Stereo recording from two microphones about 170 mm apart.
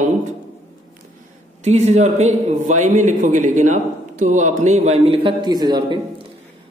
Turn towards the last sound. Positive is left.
turn(degrees=-25)  # may be behind; listen again after turning